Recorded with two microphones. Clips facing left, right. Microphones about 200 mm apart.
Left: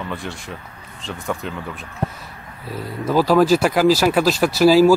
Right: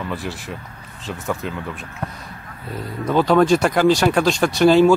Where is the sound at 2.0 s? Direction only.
30° left (ahead or behind).